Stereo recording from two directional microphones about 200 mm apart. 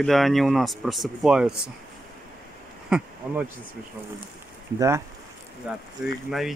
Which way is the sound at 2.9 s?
5° right (ahead or behind).